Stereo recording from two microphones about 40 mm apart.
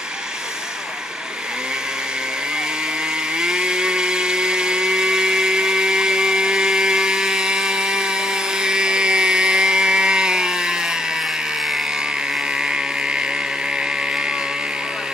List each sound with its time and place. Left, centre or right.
3.3 s chainsaw: centre